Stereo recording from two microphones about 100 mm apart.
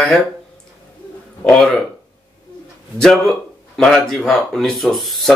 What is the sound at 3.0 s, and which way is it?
Speech, 5° left (ahead or behind).